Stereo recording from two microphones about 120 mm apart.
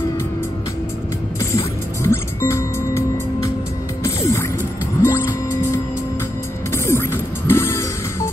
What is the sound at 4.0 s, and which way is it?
Mechanisms, 25° left (ahead or behind).